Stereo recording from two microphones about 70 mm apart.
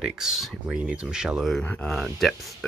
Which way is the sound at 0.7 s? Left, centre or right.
Centre.